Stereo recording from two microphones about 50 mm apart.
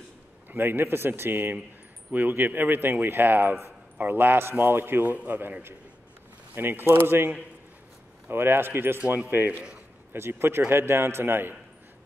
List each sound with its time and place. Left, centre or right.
0.5 s speech: right
5.1 s speech: right
6.5 s speech: right
8.3 s speech: right
9.5 s speech: right
10.1 s speech: right